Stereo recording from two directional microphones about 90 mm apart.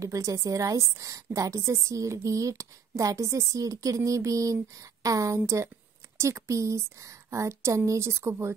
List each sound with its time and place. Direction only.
0.0 s a woman's voice: 35° right (ahead or behind)